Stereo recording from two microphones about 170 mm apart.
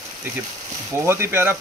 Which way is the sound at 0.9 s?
15° right (ahead or behind).